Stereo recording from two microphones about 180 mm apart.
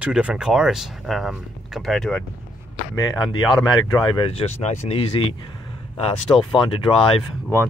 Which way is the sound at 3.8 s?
25° left (ahead or behind).